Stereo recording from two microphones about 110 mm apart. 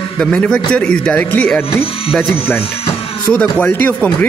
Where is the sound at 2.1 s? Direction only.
Centre (ahead or behind).